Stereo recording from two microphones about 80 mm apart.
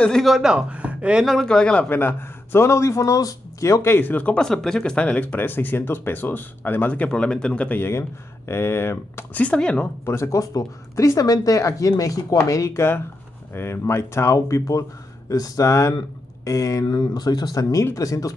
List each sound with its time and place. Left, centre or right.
0.0 s speech: centre
0.3 s speech: centre
1.2 s speech: centre
1.9 s a man's voice: left
9.3 s speech: centre
10.0 s speech: left
16.8 s speech: left